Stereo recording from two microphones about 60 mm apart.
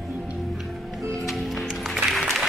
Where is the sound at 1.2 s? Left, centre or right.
Centre.